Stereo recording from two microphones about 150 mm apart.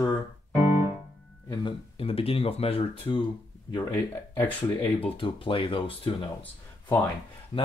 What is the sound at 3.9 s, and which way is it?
Speech, 10° left (ahead or behind).